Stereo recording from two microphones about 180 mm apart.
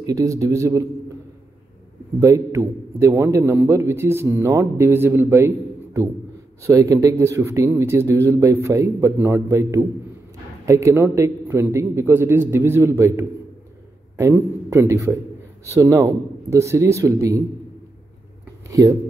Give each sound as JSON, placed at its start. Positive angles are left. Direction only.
{"t": 0.0, "sound": "a man's voice", "side_deg": -20}
{"t": 2.1, "sound": "a man's voice", "side_deg": -15}
{"t": 6.6, "sound": "a man's voice", "side_deg": -20}
{"t": 18.7, "sound": "speech", "side_deg": -20}